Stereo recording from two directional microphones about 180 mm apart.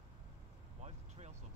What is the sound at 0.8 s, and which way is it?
Vehicle, 40° right (ahead or behind).